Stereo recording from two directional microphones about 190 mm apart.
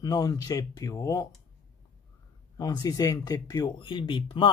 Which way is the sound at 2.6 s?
20° left (ahead or behind).